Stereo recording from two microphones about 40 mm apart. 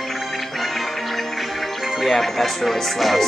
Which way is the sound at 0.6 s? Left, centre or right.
Centre.